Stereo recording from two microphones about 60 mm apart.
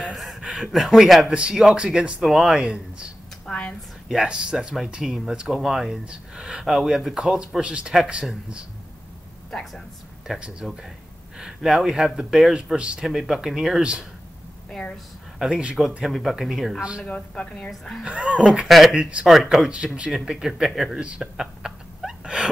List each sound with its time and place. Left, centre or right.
0.1 s speech: centre
2.2 s speech: centre
3.4 s a sound: centre
4.1 s speech: centre
9.5 s speech: centre
10.4 s speech: centre
13.0 s speech: centre
14.7 s a woman's voice: centre
15.3 s speech: centre
17.3 s a woman's voice: centre
18.0 s speech: centre
18.9 s speech: centre
19.2 s speech: centre
21.2 s a sound: centre